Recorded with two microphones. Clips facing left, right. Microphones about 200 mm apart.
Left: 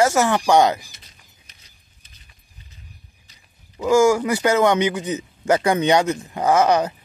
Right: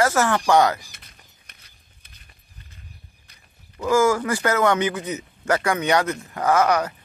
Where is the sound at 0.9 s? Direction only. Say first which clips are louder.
Right 1 dB; 55° right (ahead or behind).